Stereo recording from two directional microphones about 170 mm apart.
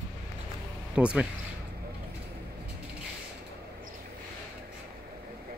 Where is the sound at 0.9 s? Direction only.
5° right (ahead or behind).